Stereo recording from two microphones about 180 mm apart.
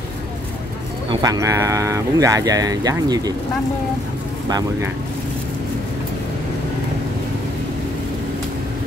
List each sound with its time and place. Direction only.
1.1 s speech: 20° right (ahead or behind)